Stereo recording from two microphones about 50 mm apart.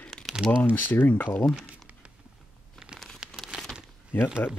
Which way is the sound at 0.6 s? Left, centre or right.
Left.